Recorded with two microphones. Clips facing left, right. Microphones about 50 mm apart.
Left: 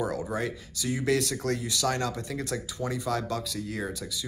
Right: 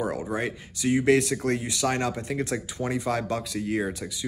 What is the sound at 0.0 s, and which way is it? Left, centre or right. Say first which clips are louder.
Speech: right 2 dB; right.